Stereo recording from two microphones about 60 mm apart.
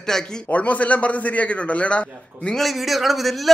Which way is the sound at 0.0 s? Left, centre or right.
Centre.